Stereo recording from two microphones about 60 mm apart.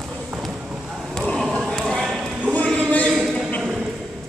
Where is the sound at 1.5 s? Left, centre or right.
Centre.